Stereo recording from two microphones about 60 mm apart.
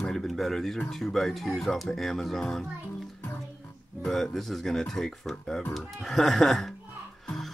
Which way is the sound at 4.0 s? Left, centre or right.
Centre.